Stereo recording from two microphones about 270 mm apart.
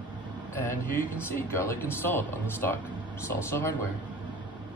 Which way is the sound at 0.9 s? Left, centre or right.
Centre.